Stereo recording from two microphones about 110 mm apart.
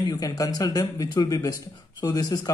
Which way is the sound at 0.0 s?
35° left (ahead or behind).